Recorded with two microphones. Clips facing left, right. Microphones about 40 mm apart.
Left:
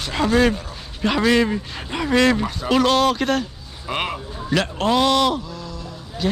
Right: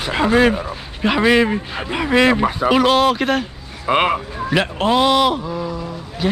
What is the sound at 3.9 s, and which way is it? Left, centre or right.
Speech, right.